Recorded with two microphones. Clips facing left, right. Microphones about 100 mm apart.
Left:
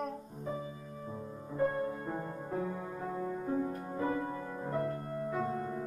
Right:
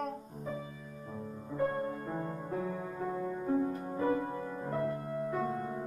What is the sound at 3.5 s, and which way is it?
Music, 15° right (ahead or behind).